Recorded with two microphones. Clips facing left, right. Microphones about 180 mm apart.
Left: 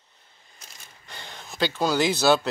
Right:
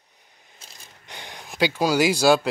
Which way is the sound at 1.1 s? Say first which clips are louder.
Right 2 dB; 15° right (ahead or behind).